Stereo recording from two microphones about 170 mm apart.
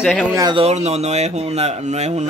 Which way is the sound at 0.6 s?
40° right (ahead or behind).